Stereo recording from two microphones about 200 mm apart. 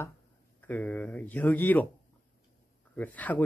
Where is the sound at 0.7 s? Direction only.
10° left (ahead or behind).